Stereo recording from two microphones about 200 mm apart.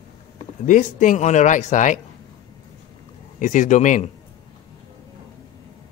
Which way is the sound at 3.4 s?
40° left (ahead or behind).